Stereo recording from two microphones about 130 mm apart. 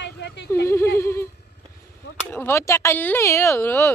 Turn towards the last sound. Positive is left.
turn(degrees=20)  # may be behind; listen again after turning